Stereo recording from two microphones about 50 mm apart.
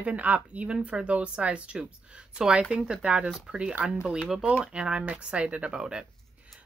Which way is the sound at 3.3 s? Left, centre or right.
Centre.